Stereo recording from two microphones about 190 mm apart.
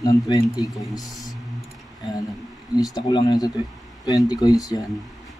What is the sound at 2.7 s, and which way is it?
A man's voice, 20° left (ahead or behind).